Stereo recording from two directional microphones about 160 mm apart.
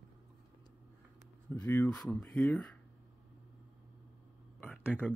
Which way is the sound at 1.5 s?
15° left (ahead or behind).